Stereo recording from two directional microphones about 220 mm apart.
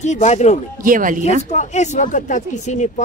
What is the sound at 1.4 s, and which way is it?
Speech, 30° left (ahead or behind).